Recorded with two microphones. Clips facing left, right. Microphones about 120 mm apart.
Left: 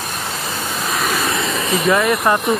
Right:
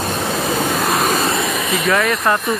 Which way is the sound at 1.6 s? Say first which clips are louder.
Left 2 dB; centre (ahead or behind).